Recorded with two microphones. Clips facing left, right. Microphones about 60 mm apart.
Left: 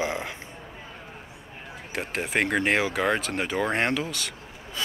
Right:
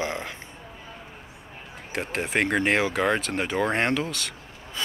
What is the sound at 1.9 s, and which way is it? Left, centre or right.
Speech, centre.